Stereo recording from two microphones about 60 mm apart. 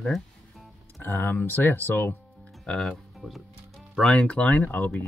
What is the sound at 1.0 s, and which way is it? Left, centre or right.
Speech, left.